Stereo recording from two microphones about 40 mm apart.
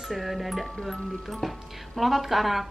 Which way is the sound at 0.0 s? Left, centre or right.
Centre.